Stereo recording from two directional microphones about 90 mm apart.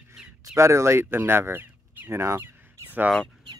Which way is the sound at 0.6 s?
30° right (ahead or behind).